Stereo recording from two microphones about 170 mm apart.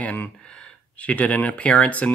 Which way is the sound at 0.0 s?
10° left (ahead or behind).